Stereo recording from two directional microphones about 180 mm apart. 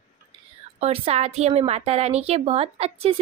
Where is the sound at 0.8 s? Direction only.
35° right (ahead or behind).